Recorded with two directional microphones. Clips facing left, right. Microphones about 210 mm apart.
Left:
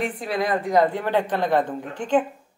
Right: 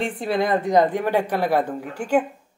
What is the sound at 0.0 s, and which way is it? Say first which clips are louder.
A woman's voice: right 2 dB; 25° right (ahead or behind).